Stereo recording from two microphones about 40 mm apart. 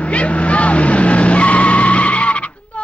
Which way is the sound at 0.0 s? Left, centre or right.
Left.